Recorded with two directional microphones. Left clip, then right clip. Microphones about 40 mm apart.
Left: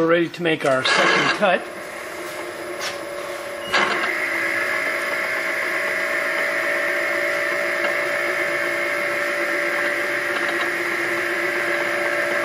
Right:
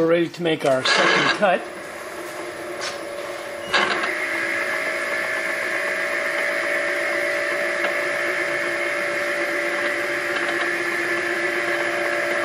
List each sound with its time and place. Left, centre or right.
0.0 s speech: right
0.7 s speech: centre
3.7 s a sound: centre